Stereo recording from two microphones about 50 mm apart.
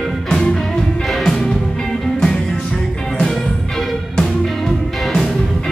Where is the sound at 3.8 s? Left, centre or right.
Centre.